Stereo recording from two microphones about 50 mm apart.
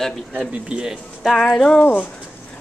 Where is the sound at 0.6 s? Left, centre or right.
Right.